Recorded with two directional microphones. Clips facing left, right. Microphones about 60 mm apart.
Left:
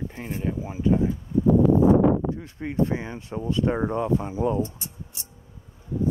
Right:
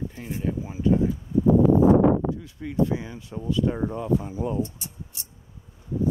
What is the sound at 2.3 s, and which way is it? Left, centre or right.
Speech, left.